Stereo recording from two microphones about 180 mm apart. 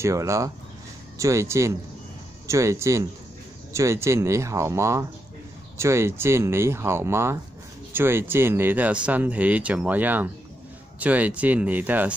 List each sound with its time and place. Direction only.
0.0 s speech: 15° right (ahead or behind)